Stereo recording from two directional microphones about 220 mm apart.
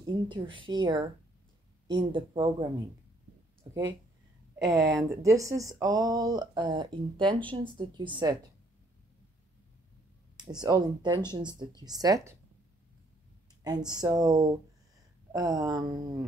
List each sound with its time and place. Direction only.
0.0 s speech: 20° right (ahead or behind)
3.6 s speech: 20° right (ahead or behind)
10.3 s speech: 20° right (ahead or behind)
13.9 s speech: 20° right (ahead or behind)